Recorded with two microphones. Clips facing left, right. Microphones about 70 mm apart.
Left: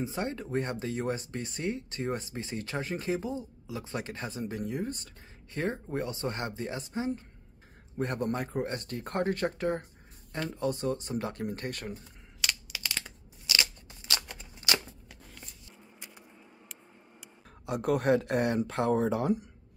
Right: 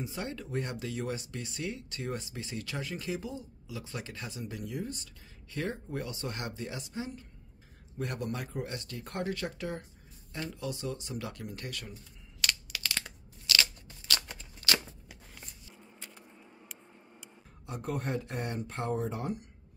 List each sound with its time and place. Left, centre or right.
0.0 s speech: left
12.4 s computer keyboard: centre
13.5 s crushing: centre
14.4 s a sound: centre
14.9 s a sound: centre
16.0 s vehicle: centre
16.3 s vehicle: centre
17.6 s speech: left